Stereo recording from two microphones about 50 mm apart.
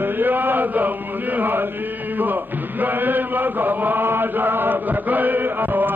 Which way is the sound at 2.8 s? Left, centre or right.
Right.